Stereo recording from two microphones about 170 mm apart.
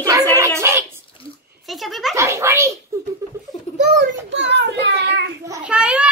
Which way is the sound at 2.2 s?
15° right (ahead or behind).